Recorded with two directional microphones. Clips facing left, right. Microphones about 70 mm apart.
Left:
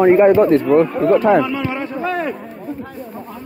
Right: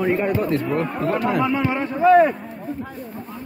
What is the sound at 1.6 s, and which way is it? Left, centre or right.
Speech, centre.